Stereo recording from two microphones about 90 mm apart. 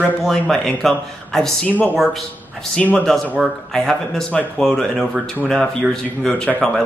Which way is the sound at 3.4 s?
5° left (ahead or behind).